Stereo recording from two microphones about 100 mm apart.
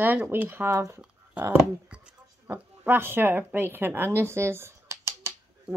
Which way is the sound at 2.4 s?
20° right (ahead or behind).